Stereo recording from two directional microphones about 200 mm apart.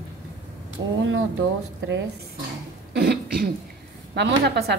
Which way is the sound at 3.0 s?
50° right (ahead or behind).